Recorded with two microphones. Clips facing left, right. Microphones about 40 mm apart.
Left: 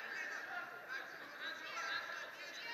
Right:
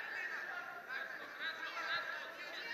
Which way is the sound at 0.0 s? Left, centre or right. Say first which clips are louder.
Right 2 dB; centre.